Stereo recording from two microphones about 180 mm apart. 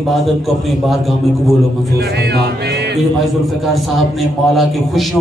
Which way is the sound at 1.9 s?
65° right (ahead or behind).